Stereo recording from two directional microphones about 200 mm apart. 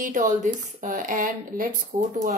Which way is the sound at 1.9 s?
30° right (ahead or behind).